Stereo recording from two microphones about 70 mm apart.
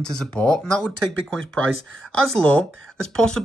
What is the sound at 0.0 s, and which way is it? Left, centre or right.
Speech, centre.